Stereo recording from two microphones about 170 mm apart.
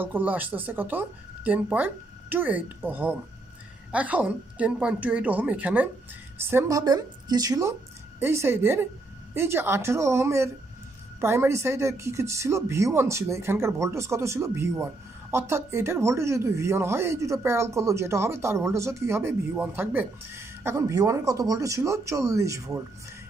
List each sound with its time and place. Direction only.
0.0 s a woman's voice: 10° right (ahead or behind)